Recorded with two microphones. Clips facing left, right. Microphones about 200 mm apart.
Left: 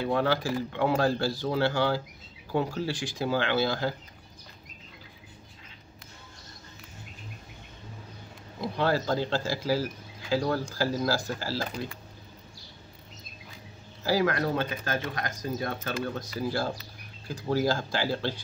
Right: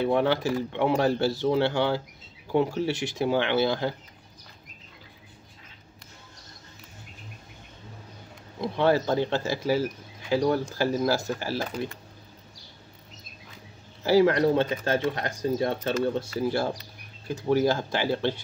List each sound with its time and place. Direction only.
0.0 s speech: 20° right (ahead or behind)
8.5 s speech: 20° right (ahead or behind)
14.0 s speech: 25° right (ahead or behind)